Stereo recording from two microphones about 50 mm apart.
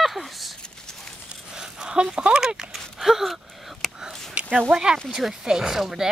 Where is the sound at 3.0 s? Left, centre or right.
Centre.